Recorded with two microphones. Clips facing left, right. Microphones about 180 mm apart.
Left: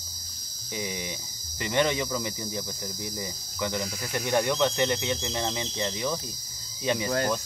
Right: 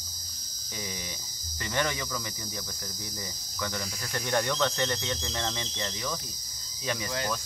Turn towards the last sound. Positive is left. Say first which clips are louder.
# left 6 dB
turn(degrees=20)  # may be behind; listen again after turning